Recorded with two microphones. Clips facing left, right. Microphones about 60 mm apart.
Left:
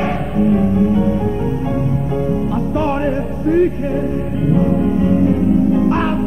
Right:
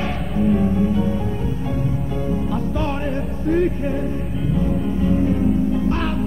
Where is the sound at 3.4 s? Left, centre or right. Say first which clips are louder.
Left 5 dB; centre.